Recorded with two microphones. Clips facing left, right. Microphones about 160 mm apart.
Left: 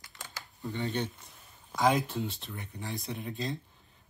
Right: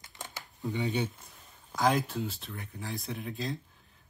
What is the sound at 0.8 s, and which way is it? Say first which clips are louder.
Speech: right 1 dB; 5° right (ahead or behind).